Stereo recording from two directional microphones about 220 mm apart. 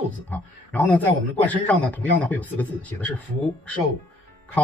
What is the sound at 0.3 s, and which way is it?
A man's voice, 5° left (ahead or behind).